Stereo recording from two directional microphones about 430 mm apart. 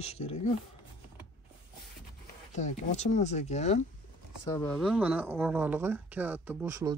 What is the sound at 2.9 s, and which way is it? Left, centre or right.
Speech, centre.